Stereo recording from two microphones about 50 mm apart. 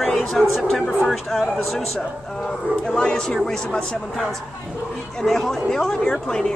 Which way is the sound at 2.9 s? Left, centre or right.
Centre.